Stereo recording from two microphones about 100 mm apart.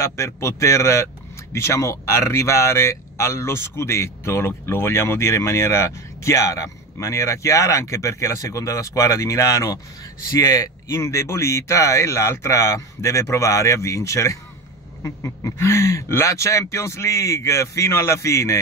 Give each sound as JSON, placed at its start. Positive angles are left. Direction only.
{"t": 0.0, "sound": "speech", "side_deg": 30}